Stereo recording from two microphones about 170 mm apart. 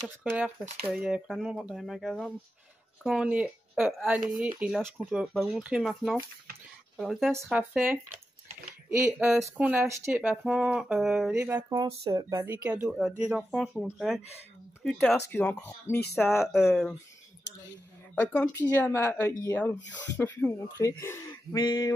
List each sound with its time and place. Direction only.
0.0 s speech: 10° right (ahead or behind)
10.4 s speech: 5° right (ahead or behind)
11.3 s speech: 15° right (ahead or behind)
12.6 s speech: 5° right (ahead or behind)
16.3 s speech: centre (ahead or behind)
18.1 s speech: 10° left (ahead or behind)
21.5 s a sound: 25° left (ahead or behind)